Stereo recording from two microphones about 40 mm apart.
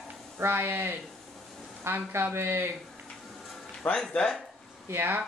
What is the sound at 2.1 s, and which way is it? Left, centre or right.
Speech, right.